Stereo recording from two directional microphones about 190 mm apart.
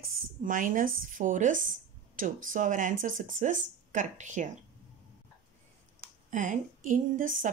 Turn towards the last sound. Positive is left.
turn(degrees=-45)  # may be behind; listen again after turning